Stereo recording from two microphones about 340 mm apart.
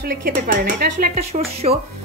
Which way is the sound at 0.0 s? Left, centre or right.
Right.